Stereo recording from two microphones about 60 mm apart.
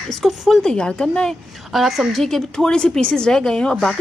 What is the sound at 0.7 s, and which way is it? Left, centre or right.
Speech, centre.